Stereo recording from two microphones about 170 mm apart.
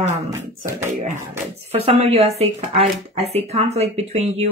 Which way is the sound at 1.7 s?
35° right (ahead or behind).